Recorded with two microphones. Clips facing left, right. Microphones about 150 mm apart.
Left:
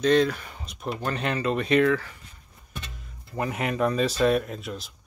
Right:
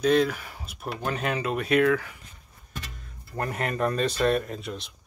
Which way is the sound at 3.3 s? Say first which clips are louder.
Left 2 dB; centre (ahead or behind).